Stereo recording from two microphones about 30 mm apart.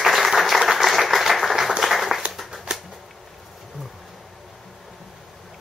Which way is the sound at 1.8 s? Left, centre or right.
Centre.